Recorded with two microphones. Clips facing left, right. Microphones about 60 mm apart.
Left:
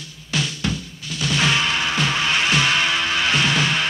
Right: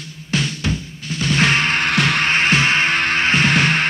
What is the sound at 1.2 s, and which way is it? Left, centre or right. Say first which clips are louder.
Music: right 3 dB; right.